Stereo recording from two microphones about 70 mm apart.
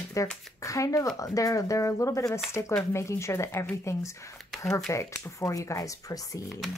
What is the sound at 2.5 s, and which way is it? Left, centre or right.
Speech, left.